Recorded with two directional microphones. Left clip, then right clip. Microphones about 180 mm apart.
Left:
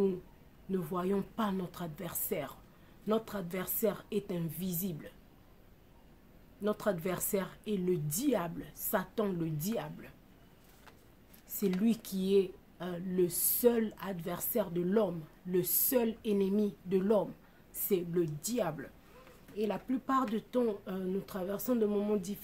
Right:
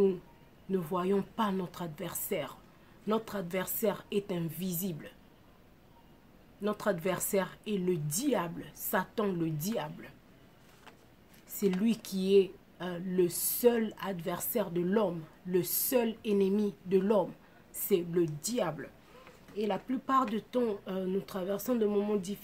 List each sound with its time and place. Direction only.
0.7 s a woman's voice: 15° right (ahead or behind)
6.6 s a woman's voice: 15° right (ahead or behind)
11.8 s a woman's voice: 15° right (ahead or behind)